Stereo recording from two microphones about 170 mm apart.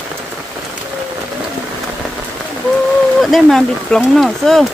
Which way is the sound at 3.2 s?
Centre (ahead or behind).